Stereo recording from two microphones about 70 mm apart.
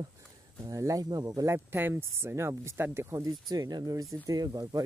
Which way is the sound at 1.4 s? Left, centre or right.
Right.